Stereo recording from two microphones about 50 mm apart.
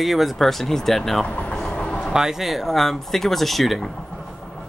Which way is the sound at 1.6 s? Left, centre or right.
Centre.